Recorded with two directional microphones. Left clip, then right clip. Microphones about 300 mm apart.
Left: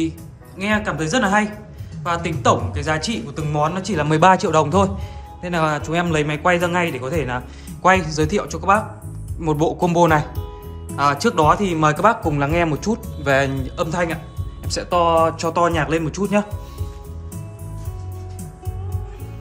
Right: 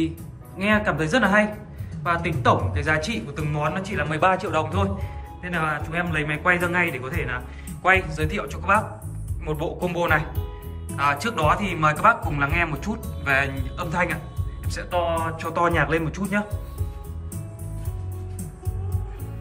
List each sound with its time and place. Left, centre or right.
0.6 s a man's voice: centre